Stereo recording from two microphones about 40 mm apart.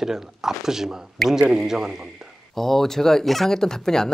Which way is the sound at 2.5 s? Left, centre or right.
Centre.